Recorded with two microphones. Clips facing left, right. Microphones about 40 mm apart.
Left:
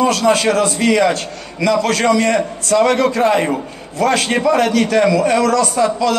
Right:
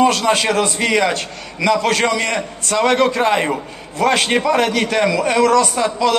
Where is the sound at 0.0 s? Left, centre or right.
Right.